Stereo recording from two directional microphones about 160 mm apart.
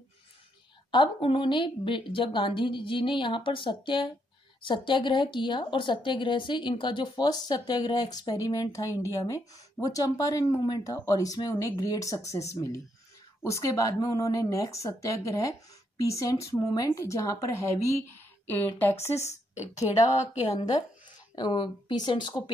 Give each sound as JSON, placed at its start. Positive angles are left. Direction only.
{"t": 0.9, "sound": "a woman's voice", "side_deg": 30}
{"t": 19.1, "sound": "a woman's voice", "side_deg": 45}
{"t": 21.4, "sound": "speech", "side_deg": 30}